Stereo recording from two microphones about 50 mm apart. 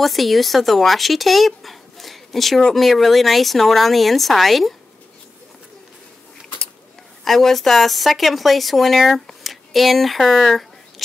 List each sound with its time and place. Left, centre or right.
0.0 s speech: centre
7.2 s speech: centre